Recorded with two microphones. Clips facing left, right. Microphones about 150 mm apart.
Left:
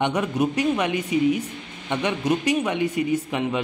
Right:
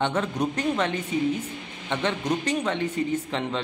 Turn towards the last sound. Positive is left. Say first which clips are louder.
# left 4 dB
turn(degrees=10)  # may be behind; listen again after turning